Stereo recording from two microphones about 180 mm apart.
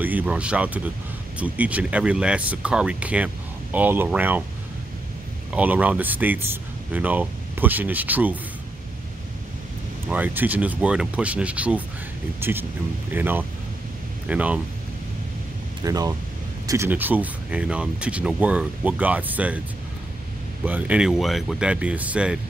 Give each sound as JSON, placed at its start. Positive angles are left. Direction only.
{"t": 0.0, "sound": "speech", "side_deg": -10}
{"t": 5.5, "sound": "speech", "side_deg": -10}
{"t": 10.0, "sound": "speech", "side_deg": -10}
{"t": 15.8, "sound": "speech", "side_deg": -20}
{"t": 20.6, "sound": "speech", "side_deg": -10}